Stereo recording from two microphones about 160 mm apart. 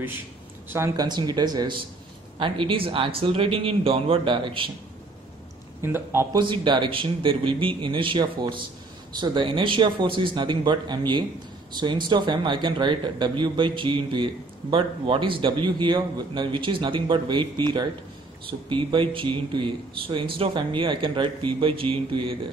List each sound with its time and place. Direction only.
0.7 s speech: 20° right (ahead or behind)
5.8 s a man's voice: 15° right (ahead or behind)
6.4 s speech: 30° right (ahead or behind)